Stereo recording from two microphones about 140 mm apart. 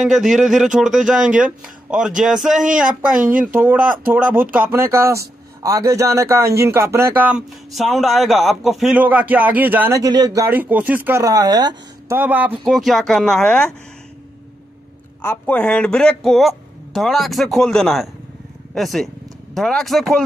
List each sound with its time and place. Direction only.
0.0 s a man's voice: 5° right (ahead or behind); by 12.2 s 25° right (ahead or behind)
12.2 s a man's voice: 10° right (ahead or behind)
12.6 s speech: centre (ahead or behind)
15.2 s speech: 10° left (ahead or behind)